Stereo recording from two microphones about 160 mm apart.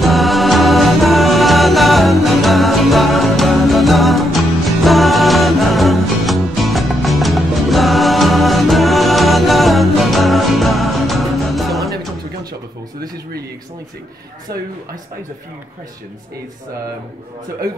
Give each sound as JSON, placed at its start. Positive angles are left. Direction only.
{"t": 0.0, "sound": "music", "side_deg": 0}